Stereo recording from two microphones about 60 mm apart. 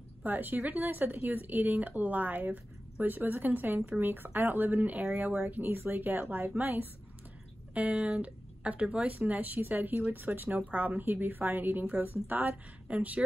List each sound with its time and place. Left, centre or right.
0.2 s speech: right